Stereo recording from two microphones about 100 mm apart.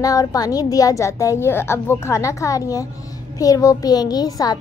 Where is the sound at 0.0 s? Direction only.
35° left (ahead or behind).